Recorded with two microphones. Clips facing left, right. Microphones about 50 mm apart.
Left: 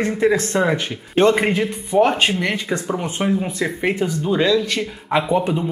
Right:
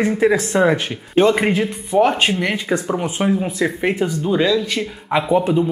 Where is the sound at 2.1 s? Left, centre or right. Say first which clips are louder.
Right 1 dB; right.